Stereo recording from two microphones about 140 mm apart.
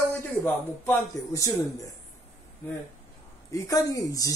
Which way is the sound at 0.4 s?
20° left (ahead or behind).